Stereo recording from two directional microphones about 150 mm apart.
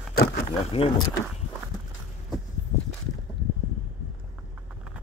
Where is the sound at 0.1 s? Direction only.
90° left.